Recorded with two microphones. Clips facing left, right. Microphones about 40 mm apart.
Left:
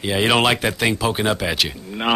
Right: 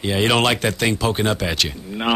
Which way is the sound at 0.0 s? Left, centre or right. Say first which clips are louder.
Left 1 dB; centre.